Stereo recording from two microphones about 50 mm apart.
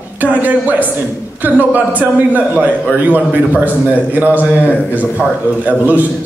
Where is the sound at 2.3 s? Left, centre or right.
Right.